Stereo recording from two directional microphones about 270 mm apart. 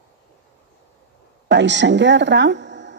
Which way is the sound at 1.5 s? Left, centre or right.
Right.